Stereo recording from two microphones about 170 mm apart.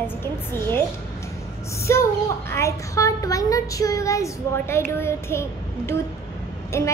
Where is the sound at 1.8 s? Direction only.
15° left (ahead or behind).